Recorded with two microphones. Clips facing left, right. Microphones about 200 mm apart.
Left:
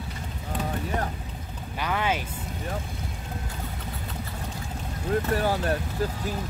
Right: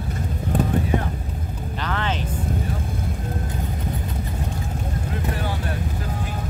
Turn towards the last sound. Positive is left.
turn(degrees=40)  # may be behind; listen again after turning